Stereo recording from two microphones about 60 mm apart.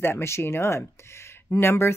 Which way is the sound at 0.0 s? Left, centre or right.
Left.